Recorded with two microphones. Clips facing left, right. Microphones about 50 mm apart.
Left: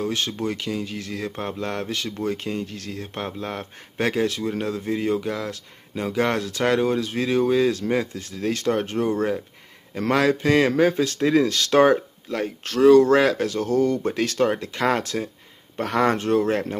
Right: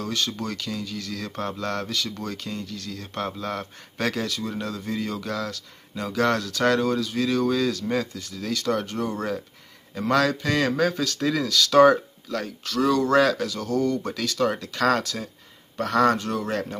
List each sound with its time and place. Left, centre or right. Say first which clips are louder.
0.0 s speech: left 3 dB; left
0.6 s speech: left 3 dB; left
3.2 s speech: right 2 dB; left